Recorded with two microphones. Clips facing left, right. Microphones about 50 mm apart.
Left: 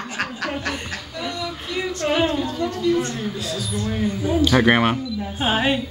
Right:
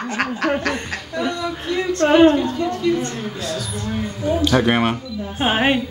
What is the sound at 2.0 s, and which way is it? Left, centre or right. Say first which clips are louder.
Speech: right 9 dB; right.